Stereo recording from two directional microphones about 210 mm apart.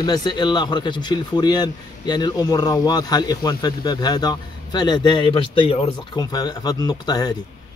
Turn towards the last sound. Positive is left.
turn(degrees=20)  # may be behind; listen again after turning